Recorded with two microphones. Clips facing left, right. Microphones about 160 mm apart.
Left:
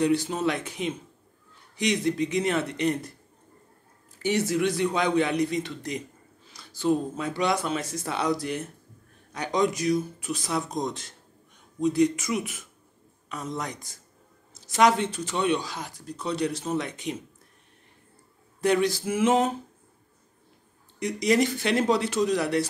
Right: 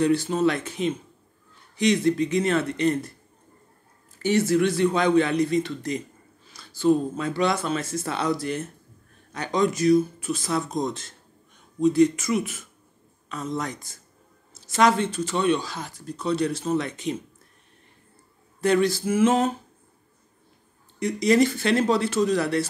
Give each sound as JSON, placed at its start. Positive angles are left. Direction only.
{"t": 0.0, "sound": "speech", "side_deg": 15}
{"t": 4.2, "sound": "speech", "side_deg": 15}
{"t": 18.6, "sound": "speech", "side_deg": 15}
{"t": 21.0, "sound": "speech", "side_deg": 15}